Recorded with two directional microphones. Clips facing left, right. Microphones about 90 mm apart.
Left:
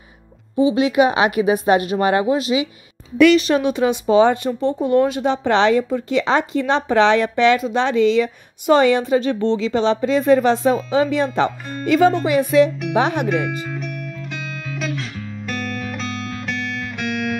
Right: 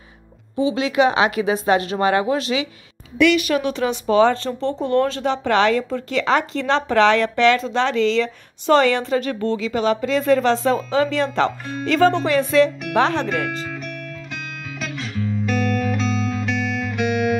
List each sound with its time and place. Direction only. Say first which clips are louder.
0.7 s a woman's voice: even; 15° left (ahead or behind)
1.8 s speech: left 2 dB; 30° right (ahead or behind)
2.5 s speech: left 3 dB; 15° left (ahead or behind)
3.2 s speech: left 4 dB; 40° left (ahead or behind)
3.4 s a woman's voice: left 3 dB; 30° left (ahead or behind); by 13.6 s 10° left (ahead or behind)
14.3 s music: left 3 dB; centre (ahead or behind)